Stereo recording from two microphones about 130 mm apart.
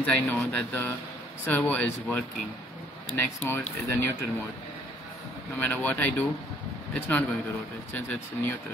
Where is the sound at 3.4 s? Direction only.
20° left (ahead or behind).